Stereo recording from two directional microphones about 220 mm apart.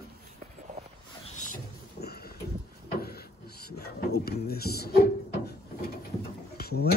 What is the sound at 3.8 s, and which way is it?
Speech, 45° left (ahead or behind).